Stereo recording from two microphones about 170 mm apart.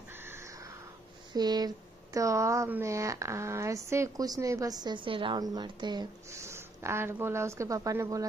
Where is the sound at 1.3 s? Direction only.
25° right (ahead or behind).